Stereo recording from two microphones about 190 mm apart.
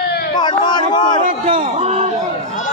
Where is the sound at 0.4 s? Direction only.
25° left (ahead or behind).